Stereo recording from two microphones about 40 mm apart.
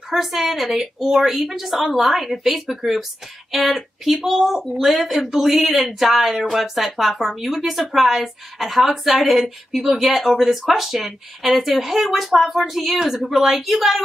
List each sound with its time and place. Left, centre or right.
0.1 s a woman's voice: centre